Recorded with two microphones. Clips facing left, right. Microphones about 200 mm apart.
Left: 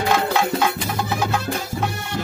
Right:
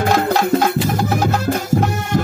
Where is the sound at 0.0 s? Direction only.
40° right (ahead or behind).